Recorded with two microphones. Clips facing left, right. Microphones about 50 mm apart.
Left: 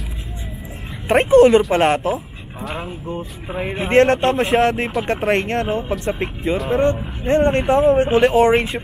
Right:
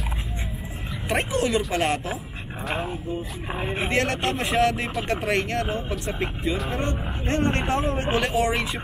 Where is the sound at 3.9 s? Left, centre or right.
Left.